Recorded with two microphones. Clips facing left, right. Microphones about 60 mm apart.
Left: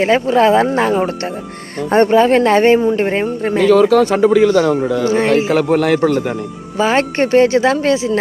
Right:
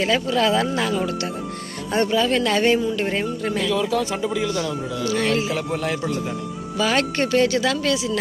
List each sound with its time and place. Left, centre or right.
0.0 s speech: left
3.7 s speech: left
4.5 s speech: left
4.7 s speech: left
5.0 s speech: left
5.5 s speech: left
5.9 s a man's voice: left
6.8 s speech: left